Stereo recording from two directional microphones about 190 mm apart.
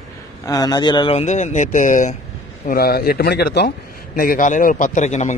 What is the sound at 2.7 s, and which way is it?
Speech, 50° left (ahead or behind).